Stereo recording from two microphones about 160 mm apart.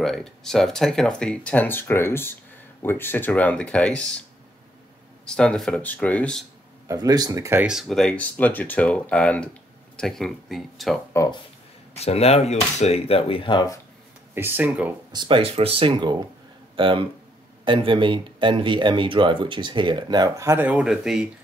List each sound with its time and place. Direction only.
0.0 s speech: 5° left (ahead or behind)
5.2 s speech: 5° left (ahead or behind)
6.9 s speech: 25° right (ahead or behind)
7.6 s speech: centre (ahead or behind)
11.9 s speech: 40° left (ahead or behind)
14.3 s speech: 10° right (ahead or behind)
15.1 s speech: 35° right (ahead or behind); by 21.3 s 5° right (ahead or behind)